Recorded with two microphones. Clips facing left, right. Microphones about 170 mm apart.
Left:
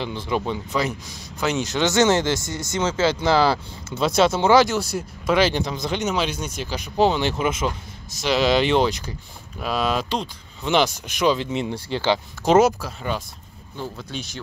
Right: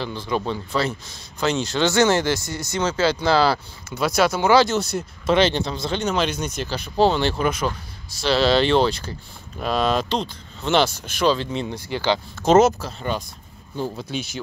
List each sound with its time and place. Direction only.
0.0 s speech: 20° left (ahead or behind)
13.7 s speech: 10° right (ahead or behind)